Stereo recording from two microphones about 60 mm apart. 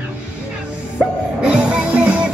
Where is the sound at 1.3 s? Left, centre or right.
Centre.